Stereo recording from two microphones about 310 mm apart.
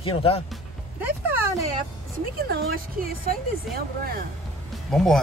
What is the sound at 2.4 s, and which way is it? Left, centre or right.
Speech, right.